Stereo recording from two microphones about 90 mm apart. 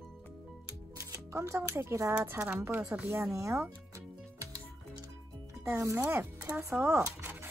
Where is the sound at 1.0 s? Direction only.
35° right (ahead or behind).